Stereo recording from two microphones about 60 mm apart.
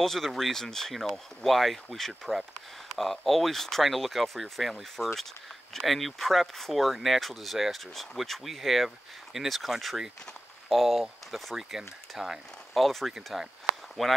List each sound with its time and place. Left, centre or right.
0.0 s speech: centre